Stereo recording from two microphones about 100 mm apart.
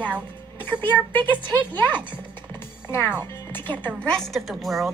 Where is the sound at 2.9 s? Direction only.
20° left (ahead or behind).